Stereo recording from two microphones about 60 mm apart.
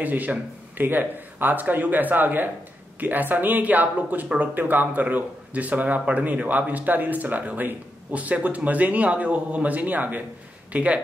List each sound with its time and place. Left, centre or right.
0.0 s speech: right